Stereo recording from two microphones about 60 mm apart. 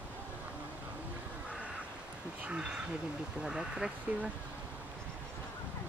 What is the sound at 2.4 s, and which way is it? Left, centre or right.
Speech, centre.